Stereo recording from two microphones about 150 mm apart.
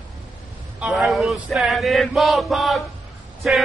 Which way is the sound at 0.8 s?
Centre (ahead or behind).